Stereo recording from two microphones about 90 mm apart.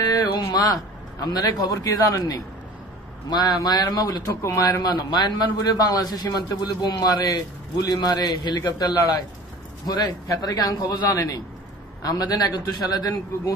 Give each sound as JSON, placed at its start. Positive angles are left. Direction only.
{"t": 0.0, "sound": "a sound", "side_deg": 50}
{"t": 1.2, "sound": "a man's voice", "side_deg": 45}
{"t": 3.3, "sound": "a man's voice", "side_deg": 50}
{"t": 4.8, "sound": "a man's voice", "side_deg": 55}